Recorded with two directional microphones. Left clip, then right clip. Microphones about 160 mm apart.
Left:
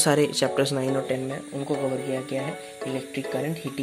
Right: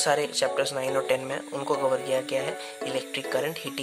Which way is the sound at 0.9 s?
30° right (ahead or behind).